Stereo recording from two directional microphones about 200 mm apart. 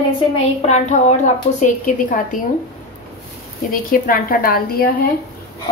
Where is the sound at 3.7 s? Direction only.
45° left (ahead or behind).